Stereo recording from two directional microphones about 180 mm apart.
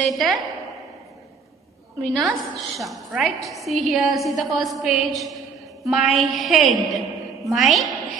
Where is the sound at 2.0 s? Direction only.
5° left (ahead or behind).